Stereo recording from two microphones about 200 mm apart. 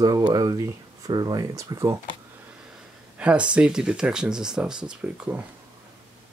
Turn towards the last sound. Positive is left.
turn(degrees=-5)  # may be behind; listen again after turning